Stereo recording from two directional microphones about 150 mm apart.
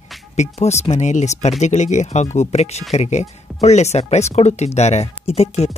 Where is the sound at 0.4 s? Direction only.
45° left (ahead or behind).